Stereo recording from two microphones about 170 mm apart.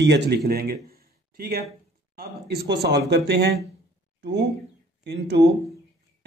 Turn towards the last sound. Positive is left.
turn(degrees=-75)  # may be behind; listen again after turning